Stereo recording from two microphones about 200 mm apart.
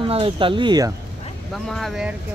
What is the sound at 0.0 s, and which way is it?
Speech, 25° right (ahead or behind).